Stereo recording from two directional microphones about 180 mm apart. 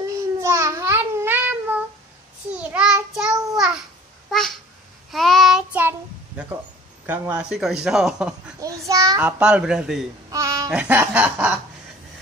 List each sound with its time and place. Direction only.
0.0 s babbling: 15° right (ahead or behind)
2.5 s child singing: 5° right (ahead or behind)
5.1 s child singing: centre (ahead or behind)
7.1 s speech: 5° right (ahead or behind)
8.5 s a sound: 20° right (ahead or behind)
9.4 s speech: 5° right (ahead or behind)
10.3 s a sound: 15° right (ahead or behind)
10.7 s snicker: 10° right (ahead or behind)